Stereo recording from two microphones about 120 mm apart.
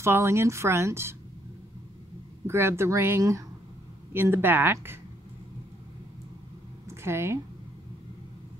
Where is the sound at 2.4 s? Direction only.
20° right (ahead or behind).